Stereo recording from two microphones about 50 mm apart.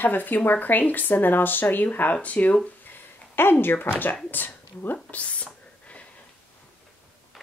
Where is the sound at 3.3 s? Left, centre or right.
Left.